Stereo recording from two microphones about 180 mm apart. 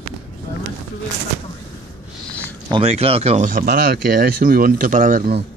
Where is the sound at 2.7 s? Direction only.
35° right (ahead or behind).